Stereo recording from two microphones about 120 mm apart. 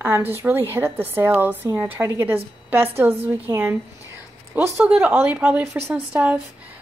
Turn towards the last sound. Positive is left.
turn(degrees=-10)  # may be behind; listen again after turning